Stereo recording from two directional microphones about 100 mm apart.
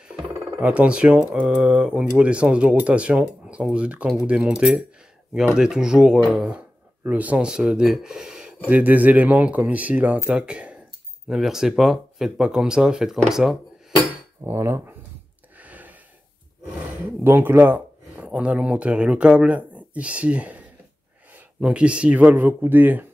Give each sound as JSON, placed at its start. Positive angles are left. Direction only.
{"t": 0.1, "sound": "speech", "side_deg": -10}
{"t": 14.4, "sound": "dishes", "side_deg": -25}
{"t": 15.6, "sound": "gasp", "side_deg": -15}
{"t": 17.2, "sound": "speech", "side_deg": -20}